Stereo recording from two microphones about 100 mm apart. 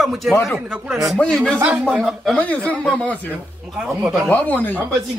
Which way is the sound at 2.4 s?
15° left (ahead or behind).